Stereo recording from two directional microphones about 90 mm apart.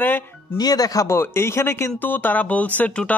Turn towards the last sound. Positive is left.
turn(degrees=15)  # may be behind; listen again after turning